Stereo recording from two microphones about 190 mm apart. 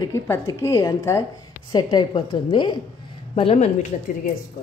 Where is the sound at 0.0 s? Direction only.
15° left (ahead or behind); by 3.9 s 35° left (ahead or behind).